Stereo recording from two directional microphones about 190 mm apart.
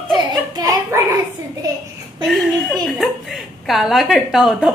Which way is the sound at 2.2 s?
Centre (ahead or behind).